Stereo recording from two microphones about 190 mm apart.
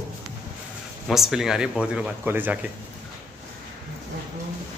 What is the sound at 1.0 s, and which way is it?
Speech, centre (ahead or behind).